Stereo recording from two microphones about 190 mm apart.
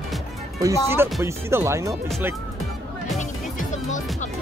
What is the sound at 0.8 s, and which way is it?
Speech, 10° right (ahead or behind).